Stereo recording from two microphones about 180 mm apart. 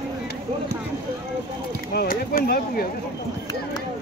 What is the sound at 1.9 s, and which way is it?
Speech, 55° left (ahead or behind).